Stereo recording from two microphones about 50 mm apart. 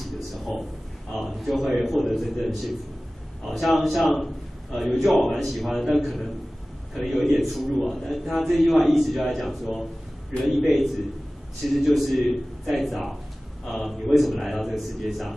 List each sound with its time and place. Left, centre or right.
0.3 s a sound: centre
1.2 s a man's voice: centre
11.7 s a man's voice: centre